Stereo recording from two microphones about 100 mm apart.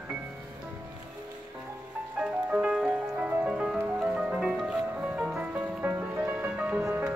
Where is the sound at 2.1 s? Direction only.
10° right (ahead or behind).